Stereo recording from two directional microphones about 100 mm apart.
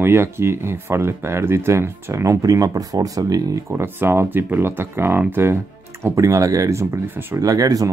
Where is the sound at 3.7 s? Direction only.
20° right (ahead or behind).